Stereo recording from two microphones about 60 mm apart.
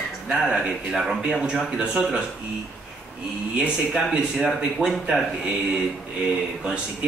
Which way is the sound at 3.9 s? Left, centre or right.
Centre.